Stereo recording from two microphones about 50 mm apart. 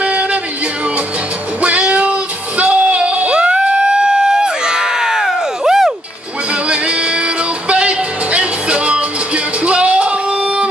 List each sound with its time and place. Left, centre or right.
0.0 s music: right
1.6 s child singing: right
6.7 s music: right